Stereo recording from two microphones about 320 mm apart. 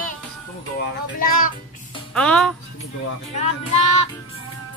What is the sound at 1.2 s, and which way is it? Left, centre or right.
Speech, left.